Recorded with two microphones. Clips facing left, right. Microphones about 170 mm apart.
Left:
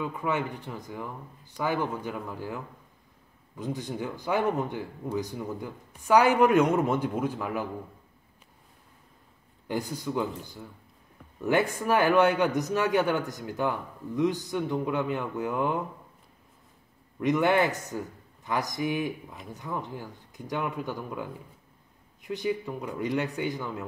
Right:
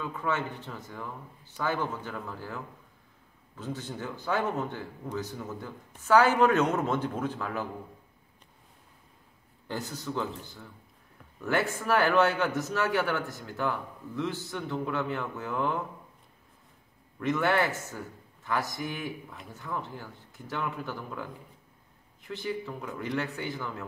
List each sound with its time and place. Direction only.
0.0 s a man's voice: 15° left (ahead or behind)
9.7 s a man's voice: 10° left (ahead or behind)
17.2 s a man's voice: 15° left (ahead or behind)